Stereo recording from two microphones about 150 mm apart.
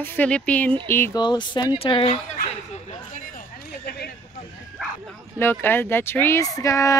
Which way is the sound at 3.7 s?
90° left.